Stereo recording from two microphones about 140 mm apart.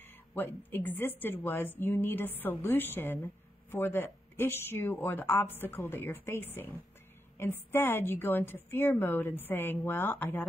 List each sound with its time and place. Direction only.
0.3 s speech: 15° left (ahead or behind)